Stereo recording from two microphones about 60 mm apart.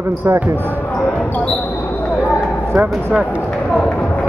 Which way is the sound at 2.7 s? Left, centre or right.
Right.